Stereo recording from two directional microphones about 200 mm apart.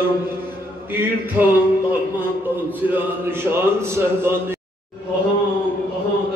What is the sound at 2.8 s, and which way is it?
Speech, 10° right (ahead or behind).